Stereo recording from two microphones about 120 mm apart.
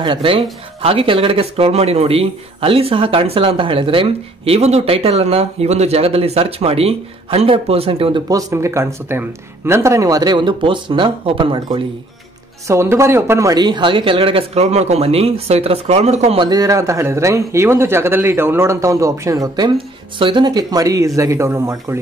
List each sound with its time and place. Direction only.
0.0 s speech: 45° right (ahead or behind)
4.6 s speech: 60° right (ahead or behind)
8.3 s speech: 30° right (ahead or behind); by 11.8 s 45° right (ahead or behind)
12.6 s speech: 25° right (ahead or behind); by 16.3 s 65° right (ahead or behind)
16.3 s speech: 35° right (ahead or behind)
20.2 s speech: 45° right (ahead or behind); by 22.0 s 20° right (ahead or behind)